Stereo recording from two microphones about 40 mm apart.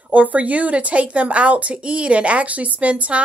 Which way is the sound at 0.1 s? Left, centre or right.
Right.